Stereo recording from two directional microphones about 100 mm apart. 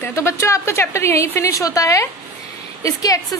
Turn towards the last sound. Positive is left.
turn(degrees=35)  # may be behind; listen again after turning